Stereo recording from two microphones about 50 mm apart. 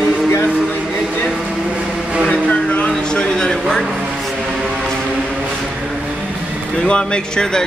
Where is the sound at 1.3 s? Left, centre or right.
Centre.